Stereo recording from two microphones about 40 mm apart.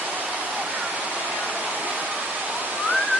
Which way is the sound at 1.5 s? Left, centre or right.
Right.